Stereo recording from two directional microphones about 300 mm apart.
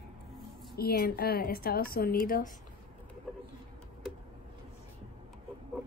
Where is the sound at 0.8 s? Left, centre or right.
Left.